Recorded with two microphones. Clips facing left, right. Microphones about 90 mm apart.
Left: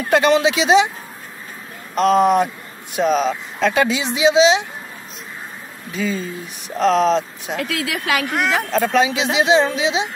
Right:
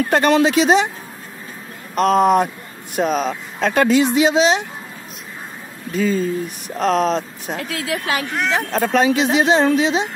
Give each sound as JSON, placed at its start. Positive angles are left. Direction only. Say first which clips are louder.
{"t": 0.1, "sound": "speech", "louder": "left 1 dB", "side_deg": -45}
{"t": 2.0, "sound": "speech", "louder": "even", "side_deg": -45}
{"t": 5.9, "sound": "speech", "louder": "right 5 dB", "side_deg": -45}